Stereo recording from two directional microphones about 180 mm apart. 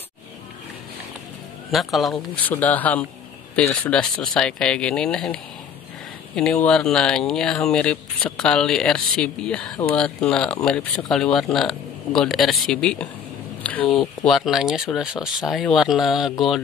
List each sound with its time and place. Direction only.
1.7 s speech: centre (ahead or behind)